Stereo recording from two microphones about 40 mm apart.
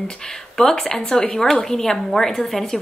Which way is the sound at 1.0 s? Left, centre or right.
Left.